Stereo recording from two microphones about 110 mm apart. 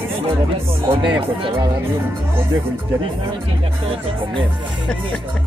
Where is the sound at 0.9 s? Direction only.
50° right (ahead or behind).